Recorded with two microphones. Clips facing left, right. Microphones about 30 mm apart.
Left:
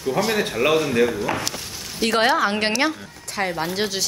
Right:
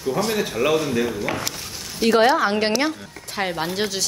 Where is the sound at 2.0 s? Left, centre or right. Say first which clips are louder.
Right 2 dB; left.